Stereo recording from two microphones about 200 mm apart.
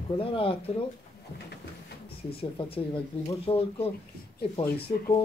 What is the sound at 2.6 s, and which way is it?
Speech, 25° left (ahead or behind).